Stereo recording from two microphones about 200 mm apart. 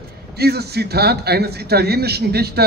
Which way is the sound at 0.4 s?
55° right (ahead or behind).